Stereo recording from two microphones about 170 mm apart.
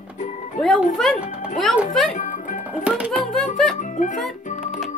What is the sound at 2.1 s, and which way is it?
Music, 50° left (ahead or behind).